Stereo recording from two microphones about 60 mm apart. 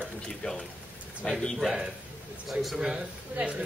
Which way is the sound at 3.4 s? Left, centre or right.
Centre.